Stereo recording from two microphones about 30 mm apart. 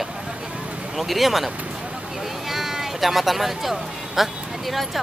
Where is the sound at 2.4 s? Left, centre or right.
Centre.